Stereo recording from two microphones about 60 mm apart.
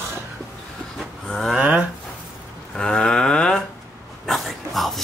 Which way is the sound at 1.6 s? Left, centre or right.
Right.